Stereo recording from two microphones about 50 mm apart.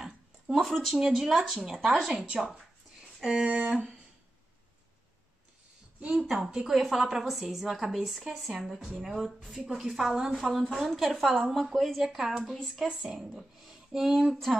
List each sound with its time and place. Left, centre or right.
0.6 s a woman's voice: centre
0.9 s a woman's voice: centre
3.4 s speech: right
3.7 s a sound: centre
5.9 s a woman's voice: centre